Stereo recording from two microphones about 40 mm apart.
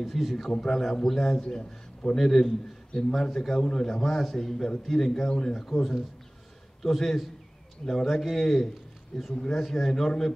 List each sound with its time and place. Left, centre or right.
0.0 s a man's voice: centre
0.5 s a man's voice: centre
1.4 s a man's voice: left
2.1 s a man's voice: centre